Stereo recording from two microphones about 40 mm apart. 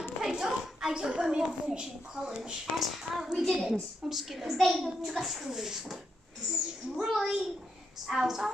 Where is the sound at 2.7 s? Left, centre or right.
Centre.